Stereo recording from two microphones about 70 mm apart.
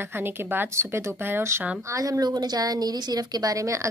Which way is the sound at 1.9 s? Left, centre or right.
Right.